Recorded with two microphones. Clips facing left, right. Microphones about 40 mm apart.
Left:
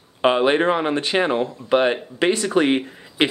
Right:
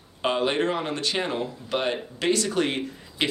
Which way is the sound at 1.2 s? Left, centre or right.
Left.